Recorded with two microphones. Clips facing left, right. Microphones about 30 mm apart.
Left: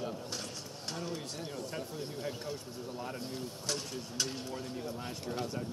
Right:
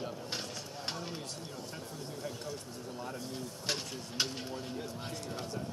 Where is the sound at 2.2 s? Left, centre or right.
Left.